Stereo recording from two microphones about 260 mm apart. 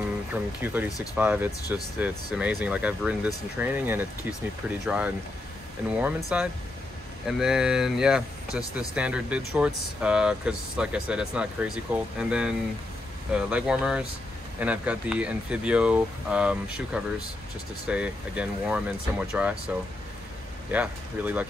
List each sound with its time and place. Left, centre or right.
0.3 s speech: centre